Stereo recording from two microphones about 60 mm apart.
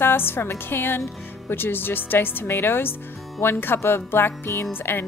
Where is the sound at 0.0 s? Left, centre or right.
Left.